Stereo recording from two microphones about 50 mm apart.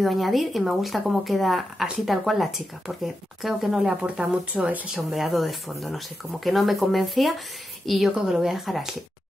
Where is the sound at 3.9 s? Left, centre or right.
Right.